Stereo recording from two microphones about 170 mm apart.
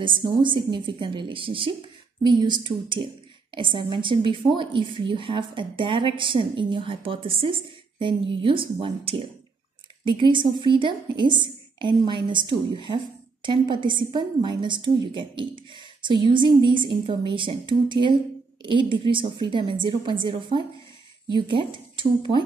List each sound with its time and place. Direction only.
0.0 s a woman's voice: 30° right (ahead or behind)